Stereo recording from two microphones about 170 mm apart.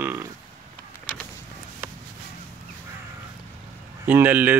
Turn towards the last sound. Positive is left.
turn(degrees=-10)  # may be behind; listen again after turning